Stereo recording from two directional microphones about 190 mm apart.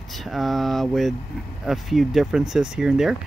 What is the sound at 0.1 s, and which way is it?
Speech, centre (ahead or behind).